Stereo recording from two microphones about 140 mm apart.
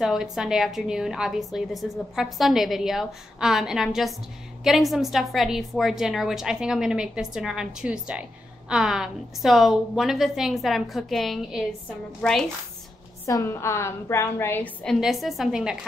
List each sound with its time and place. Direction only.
0.0 s a woman's voice: 5° right (ahead or behind)
13.3 s a woman's voice: 25° left (ahead or behind)
15.0 s a woman's voice: centre (ahead or behind)